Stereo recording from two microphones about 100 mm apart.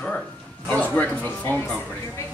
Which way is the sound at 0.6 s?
15° left (ahead or behind).